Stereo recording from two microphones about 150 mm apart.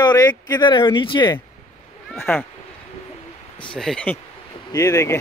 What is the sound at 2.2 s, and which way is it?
Speech, 15° left (ahead or behind).